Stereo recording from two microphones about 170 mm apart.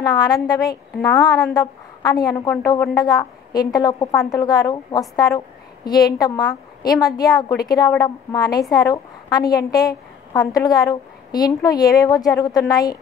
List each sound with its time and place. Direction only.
0.0 s a woman's voice: 25° left (ahead or behind)